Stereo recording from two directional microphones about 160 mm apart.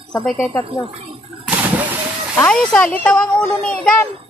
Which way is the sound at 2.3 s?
5° left (ahead or behind).